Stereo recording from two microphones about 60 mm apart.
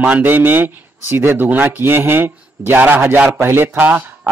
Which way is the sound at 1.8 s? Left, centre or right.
Right.